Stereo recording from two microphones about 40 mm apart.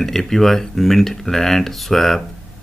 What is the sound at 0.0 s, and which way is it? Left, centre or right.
Speech, centre.